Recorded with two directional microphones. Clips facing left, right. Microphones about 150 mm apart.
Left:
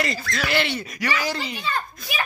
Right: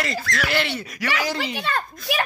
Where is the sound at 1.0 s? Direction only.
70° right (ahead or behind).